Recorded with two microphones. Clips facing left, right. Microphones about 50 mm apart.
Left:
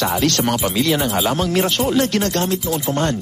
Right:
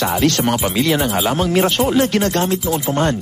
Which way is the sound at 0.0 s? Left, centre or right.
Centre.